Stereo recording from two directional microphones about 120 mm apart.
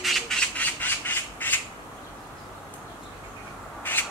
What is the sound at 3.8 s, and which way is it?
Crow, 15° left (ahead or behind).